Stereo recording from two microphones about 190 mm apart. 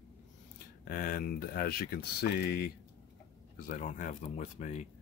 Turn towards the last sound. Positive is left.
turn(degrees=40)  # may be behind; listen again after turning